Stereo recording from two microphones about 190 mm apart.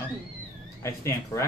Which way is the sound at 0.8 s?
15° left (ahead or behind).